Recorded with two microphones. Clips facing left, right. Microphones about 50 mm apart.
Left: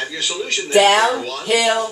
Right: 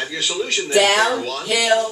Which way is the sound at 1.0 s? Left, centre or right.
Centre.